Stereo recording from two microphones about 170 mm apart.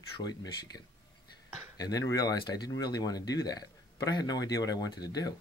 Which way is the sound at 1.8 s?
20° left (ahead or behind).